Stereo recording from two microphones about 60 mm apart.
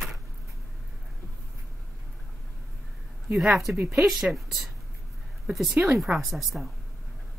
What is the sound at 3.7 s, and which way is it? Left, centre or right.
Speech, right.